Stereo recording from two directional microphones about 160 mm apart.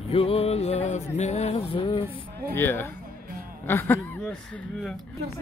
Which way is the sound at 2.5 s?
15° left (ahead or behind).